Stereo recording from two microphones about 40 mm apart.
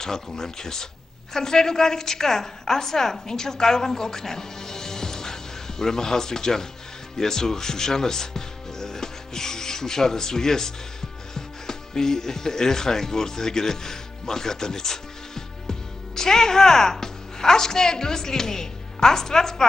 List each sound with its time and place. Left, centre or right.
0.0 s a woman's voice: centre